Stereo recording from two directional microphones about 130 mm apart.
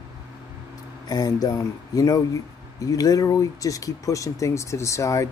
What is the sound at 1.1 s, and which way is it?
Speech, 30° left (ahead or behind).